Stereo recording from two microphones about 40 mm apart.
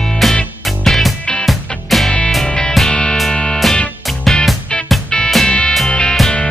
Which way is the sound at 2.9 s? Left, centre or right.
Centre.